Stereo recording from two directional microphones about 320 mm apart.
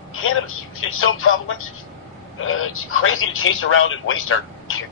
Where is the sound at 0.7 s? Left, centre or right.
Left.